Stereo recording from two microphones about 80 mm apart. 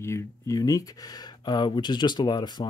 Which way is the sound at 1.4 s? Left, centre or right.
Left.